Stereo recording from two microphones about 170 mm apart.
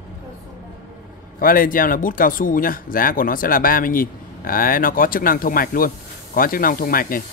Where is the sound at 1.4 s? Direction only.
55° left (ahead or behind).